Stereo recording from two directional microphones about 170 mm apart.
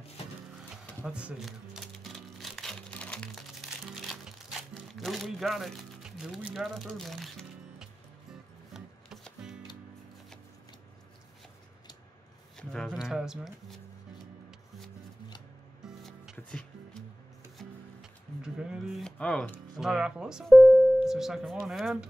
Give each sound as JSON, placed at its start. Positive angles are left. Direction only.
{"t": 1.0, "sound": "music", "side_deg": -5}
{"t": 12.5, "sound": "speech", "side_deg": 5}
{"t": 15.8, "sound": "music", "side_deg": 0}
{"t": 18.4, "sound": "music", "side_deg": -5}
{"t": 19.8, "sound": "speech", "side_deg": -5}